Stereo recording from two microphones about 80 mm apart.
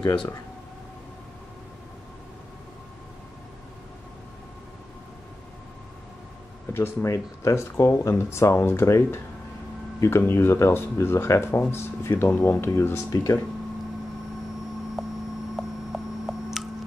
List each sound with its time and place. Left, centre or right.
0.0 s speech: left
6.7 s speech: left
15.0 s a sound: centre